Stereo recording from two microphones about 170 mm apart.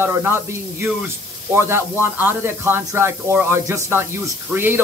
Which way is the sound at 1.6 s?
15° right (ahead or behind).